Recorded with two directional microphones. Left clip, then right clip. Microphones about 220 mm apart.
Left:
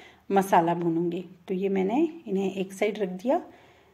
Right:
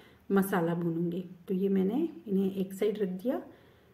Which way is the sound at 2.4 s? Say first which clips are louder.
Left 4 dB; 20° left (ahead or behind).